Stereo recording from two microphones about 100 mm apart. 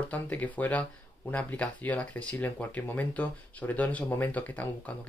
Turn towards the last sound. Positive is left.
turn(degrees=15)  # may be behind; listen again after turning